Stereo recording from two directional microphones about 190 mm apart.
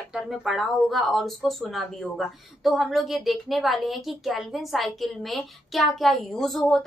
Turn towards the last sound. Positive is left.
turn(degrees=0)  # may be behind; listen again after turning